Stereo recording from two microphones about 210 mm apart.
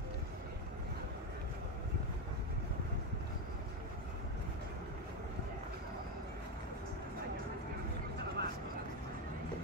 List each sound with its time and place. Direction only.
8.4 s vehicle: 50° right (ahead or behind)